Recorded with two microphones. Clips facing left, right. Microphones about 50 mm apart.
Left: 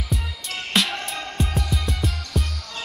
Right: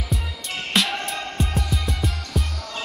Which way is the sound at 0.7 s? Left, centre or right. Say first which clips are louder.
Right 1 dB; centre.